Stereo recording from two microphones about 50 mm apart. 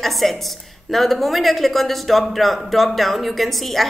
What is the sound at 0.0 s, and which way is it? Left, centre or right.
A woman's voice, centre.